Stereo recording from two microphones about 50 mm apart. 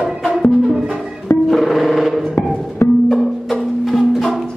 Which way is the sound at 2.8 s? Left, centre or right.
Left.